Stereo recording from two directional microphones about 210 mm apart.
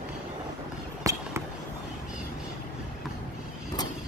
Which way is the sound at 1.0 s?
15° right (ahead or behind).